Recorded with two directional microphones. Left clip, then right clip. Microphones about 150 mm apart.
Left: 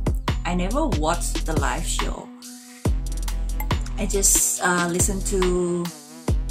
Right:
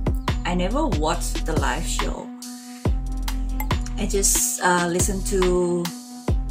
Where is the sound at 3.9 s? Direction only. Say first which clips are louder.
Even; 25° left (ahead or behind).